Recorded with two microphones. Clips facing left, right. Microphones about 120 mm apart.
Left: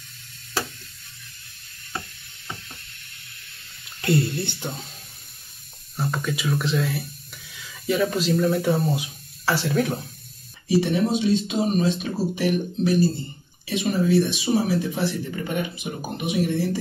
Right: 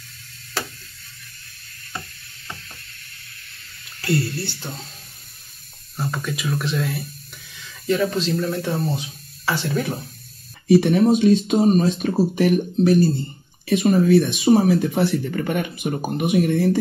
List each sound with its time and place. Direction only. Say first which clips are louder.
4.0 s speech: left 1 dB; 20° left (ahead or behind)
5.9 s speech: even; centre (ahead or behind)
10.7 s speech: right 6 dB; 55° right (ahead or behind)